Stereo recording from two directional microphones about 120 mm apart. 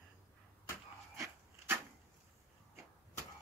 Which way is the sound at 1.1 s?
25° right (ahead or behind).